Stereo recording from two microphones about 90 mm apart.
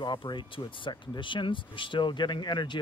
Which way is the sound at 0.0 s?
60° left (ahead or behind).